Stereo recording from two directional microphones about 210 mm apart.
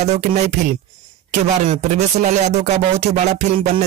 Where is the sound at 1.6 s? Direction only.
35° right (ahead or behind).